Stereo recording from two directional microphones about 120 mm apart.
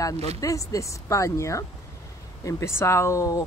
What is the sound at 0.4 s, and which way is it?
Speech, 25° left (ahead or behind).